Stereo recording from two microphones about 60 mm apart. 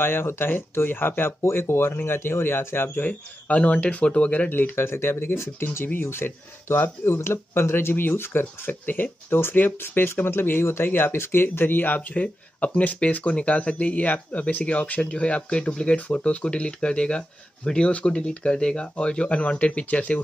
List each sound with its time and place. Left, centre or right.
0.0 s speech: left
3.0 s speech: left